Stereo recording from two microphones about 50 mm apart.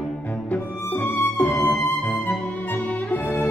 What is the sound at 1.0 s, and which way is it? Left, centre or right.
Music, left.